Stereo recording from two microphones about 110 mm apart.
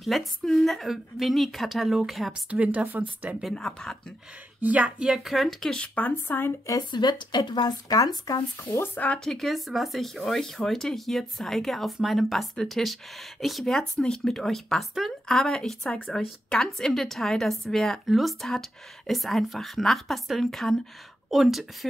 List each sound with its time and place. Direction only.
0.0 s speech: centre (ahead or behind)
2.5 s speech: 15° right (ahead or behind)
3.4 s speech: 5° left (ahead or behind)
4.6 s speech: 15° right (ahead or behind); by 6.8 s 25° left (ahead or behind)
6.8 s speech: 40° left (ahead or behind)
8.6 s speech: 15° left (ahead or behind); by 21.6 s centre (ahead or behind)